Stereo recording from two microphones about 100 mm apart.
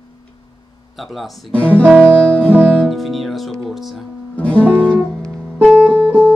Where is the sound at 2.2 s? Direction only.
10° left (ahead or behind).